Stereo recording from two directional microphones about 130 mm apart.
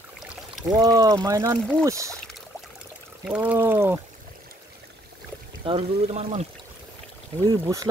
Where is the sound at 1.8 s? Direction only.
25° right (ahead or behind).